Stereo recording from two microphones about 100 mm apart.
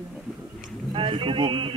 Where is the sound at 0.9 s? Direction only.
60° right (ahead or behind).